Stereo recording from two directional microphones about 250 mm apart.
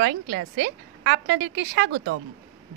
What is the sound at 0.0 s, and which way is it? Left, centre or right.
A woman's voice, right.